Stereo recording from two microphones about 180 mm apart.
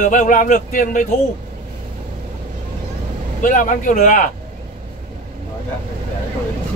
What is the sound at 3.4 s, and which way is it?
Speech, 45° left (ahead or behind).